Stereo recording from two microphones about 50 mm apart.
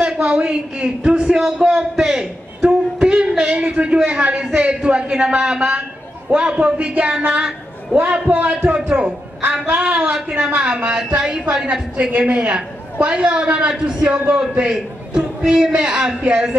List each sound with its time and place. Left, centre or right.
0.0 s a man's voice: centre
2.6 s a man's voice: right